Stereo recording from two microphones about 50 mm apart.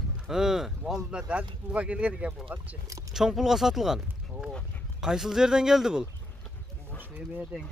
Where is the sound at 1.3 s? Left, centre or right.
Right.